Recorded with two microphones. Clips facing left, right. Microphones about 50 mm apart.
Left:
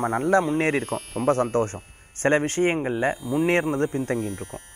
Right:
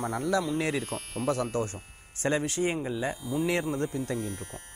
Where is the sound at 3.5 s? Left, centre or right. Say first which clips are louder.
Left 7 dB; left.